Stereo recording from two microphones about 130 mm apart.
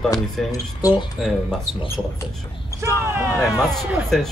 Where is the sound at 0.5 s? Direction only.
25° left (ahead or behind).